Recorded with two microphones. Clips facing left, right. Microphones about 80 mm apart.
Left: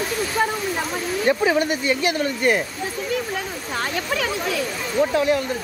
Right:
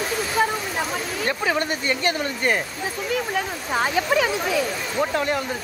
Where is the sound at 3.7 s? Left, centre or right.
Centre.